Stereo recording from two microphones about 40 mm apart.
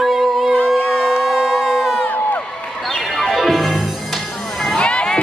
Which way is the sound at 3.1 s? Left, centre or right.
Centre.